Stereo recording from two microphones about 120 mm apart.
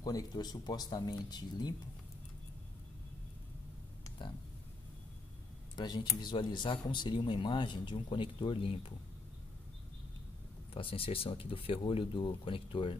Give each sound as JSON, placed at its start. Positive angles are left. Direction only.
{"t": 0.0, "sound": "speech", "side_deg": 30}
{"t": 5.8, "sound": "speech", "side_deg": 35}
{"t": 10.7, "sound": "speech", "side_deg": 50}